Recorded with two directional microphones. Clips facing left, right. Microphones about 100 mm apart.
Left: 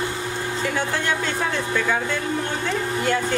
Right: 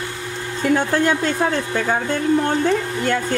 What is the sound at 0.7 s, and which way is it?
Speech, 45° right (ahead or behind).